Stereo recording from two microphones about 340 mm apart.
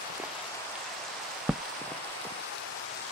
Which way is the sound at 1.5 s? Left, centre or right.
Centre.